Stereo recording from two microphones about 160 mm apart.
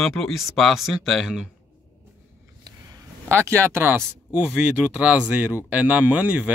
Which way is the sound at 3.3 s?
15° right (ahead or behind).